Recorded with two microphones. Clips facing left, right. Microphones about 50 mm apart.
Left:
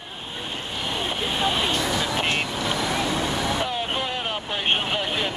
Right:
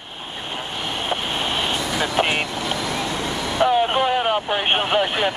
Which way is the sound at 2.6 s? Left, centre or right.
Centre.